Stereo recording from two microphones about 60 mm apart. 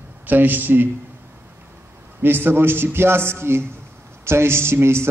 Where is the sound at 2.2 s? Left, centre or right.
Right.